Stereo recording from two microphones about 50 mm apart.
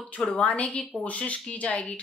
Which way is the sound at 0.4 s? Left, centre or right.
Left.